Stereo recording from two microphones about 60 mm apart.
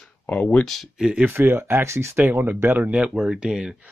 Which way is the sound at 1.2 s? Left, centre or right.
Right.